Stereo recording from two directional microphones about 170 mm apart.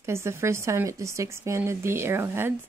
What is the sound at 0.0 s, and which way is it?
Speech, 15° right (ahead or behind).